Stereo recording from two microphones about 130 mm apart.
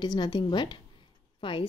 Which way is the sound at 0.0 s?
35° left (ahead or behind).